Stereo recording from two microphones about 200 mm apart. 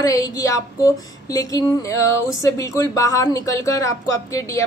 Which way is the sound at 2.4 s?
15° left (ahead or behind).